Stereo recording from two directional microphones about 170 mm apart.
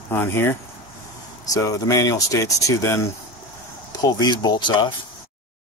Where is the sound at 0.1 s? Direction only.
10° left (ahead or behind).